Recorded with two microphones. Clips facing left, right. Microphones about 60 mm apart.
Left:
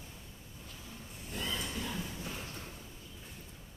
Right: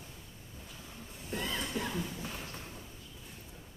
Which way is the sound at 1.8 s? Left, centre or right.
Right.